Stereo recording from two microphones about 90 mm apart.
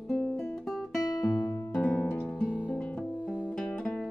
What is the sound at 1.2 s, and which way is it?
Music, 40° left (ahead or behind).